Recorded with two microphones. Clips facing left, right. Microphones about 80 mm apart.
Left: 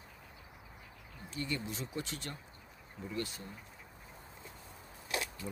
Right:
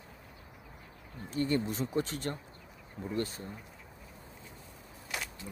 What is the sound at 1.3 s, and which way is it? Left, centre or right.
Speech, right.